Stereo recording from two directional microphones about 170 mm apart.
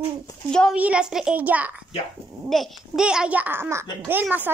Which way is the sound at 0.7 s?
5° right (ahead or behind).